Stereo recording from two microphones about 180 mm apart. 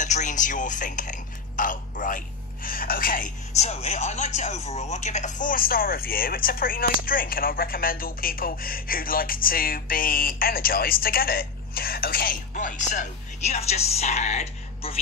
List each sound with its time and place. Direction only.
0.0 s a man's voice: 45° left (ahead or behind)